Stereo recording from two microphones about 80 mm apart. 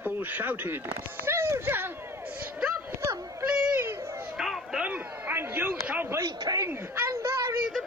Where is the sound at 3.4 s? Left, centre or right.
Centre.